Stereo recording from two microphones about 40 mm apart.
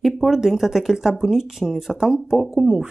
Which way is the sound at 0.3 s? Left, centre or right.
Centre.